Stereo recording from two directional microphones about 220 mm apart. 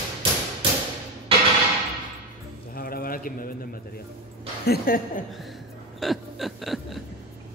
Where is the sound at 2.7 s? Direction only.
40° left (ahead or behind).